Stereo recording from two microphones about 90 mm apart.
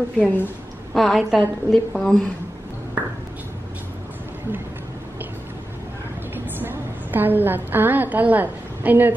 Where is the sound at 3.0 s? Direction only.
15° right (ahead or behind).